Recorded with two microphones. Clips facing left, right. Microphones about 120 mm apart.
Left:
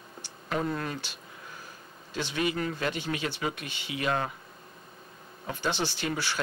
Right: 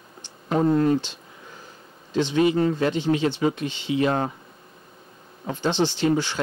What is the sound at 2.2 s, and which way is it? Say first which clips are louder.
Speech: right 10 dB; 25° right (ahead or behind).